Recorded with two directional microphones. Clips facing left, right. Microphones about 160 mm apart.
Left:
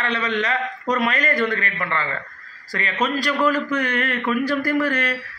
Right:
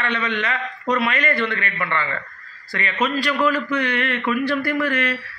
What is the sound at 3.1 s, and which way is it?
A man's voice, 40° left (ahead or behind).